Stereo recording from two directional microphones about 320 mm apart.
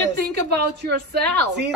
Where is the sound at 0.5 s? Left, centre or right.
Right.